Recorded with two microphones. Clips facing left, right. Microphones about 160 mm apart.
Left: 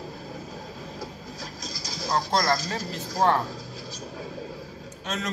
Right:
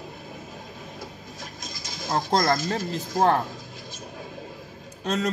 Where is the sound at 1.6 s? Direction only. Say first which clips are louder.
Left 2 dB; 35° left (ahead or behind).